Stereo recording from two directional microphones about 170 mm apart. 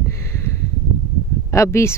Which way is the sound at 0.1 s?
15° left (ahead or behind).